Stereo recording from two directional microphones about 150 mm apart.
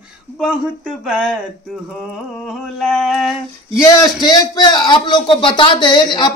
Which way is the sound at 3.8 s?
25° left (ahead or behind).